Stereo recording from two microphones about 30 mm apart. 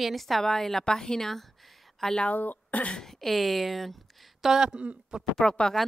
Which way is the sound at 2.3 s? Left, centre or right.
Left.